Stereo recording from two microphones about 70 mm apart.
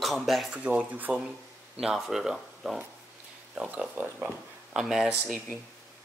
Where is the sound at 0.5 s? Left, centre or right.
Centre.